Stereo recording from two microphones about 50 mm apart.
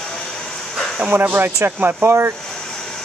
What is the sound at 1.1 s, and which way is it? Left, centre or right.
Speech, right.